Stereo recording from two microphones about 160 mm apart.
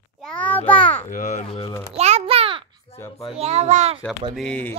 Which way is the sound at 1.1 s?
55° left (ahead or behind).